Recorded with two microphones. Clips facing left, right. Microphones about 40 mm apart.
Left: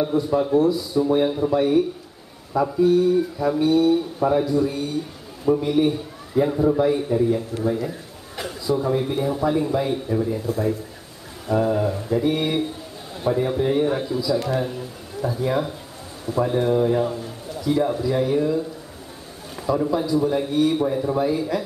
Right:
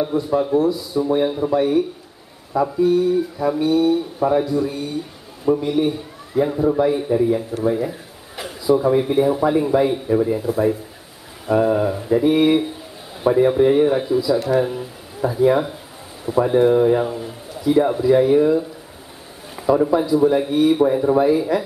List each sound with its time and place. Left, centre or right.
0.0 s speech: centre; by 9.8 s right
9.8 s mantra: right
14.6 s speech: centre